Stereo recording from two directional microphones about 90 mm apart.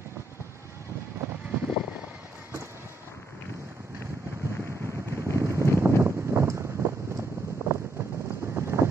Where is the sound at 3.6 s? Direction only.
30° right (ahead or behind).